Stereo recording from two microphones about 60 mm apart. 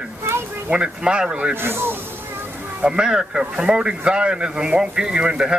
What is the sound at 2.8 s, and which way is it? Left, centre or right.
A man's voice, centre.